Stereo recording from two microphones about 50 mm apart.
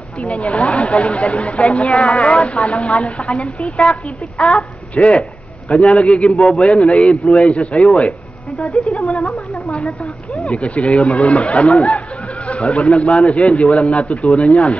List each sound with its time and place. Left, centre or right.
0.4 s a woman's voice: left
8.5 s speech: centre
9.7 s a woman's voice: left